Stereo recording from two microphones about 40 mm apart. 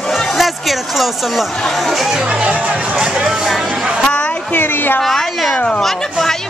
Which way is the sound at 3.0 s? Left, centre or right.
Right.